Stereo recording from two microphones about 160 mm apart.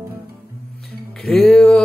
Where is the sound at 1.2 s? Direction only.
5° left (ahead or behind).